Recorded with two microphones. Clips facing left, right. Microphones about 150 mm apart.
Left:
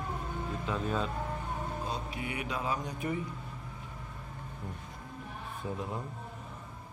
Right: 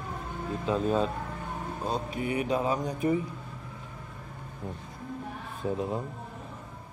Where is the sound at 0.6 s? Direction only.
25° right (ahead or behind).